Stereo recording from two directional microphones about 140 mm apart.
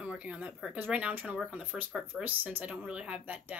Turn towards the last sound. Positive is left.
turn(degrees=-10)  # may be behind; listen again after turning